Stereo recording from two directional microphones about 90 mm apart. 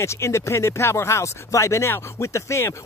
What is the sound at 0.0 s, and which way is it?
Speech, 30° left (ahead or behind).